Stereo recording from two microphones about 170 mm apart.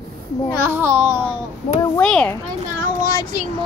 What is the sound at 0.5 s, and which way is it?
Child singing, 15° right (ahead or behind).